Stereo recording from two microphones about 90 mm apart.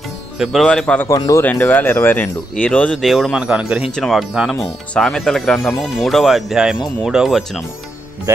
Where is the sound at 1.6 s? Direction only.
20° left (ahead or behind).